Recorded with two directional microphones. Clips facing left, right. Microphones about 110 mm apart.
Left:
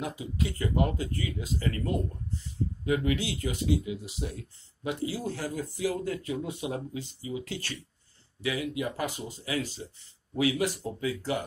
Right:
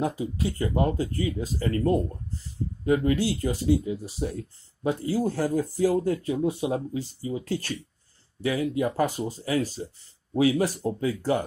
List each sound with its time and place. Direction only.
0.2 s speech: 30° right (ahead or behind)